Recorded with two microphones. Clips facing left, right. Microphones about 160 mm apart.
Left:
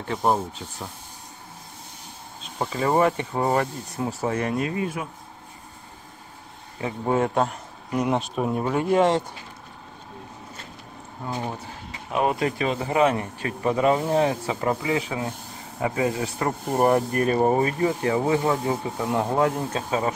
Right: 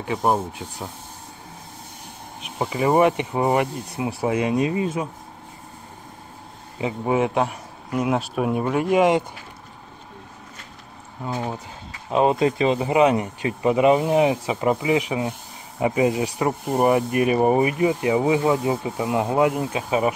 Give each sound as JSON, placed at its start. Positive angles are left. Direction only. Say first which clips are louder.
{"t": 0.0, "sound": "speech", "louder": "right 2 dB", "side_deg": -10}
{"t": 2.4, "sound": "speech", "louder": "right 3 dB", "side_deg": -15}
{"t": 6.8, "sound": "speech", "louder": "right 2 dB", "side_deg": -10}
{"t": 11.3, "sound": "speech", "louder": "right 3 dB", "side_deg": -10}
{"t": 12.1, "sound": "speech", "louder": "right 5 dB", "side_deg": -25}